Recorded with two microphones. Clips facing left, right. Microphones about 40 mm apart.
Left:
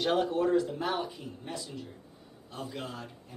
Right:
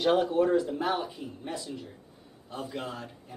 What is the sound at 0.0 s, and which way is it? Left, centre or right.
Speech, centre.